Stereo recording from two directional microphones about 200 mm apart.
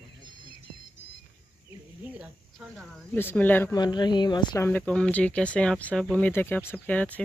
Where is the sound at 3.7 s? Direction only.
20° left (ahead or behind).